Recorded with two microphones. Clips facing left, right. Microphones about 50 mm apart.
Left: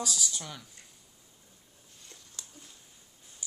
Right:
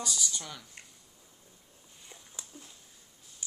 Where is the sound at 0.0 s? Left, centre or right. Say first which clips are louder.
Left 1 dB; centre.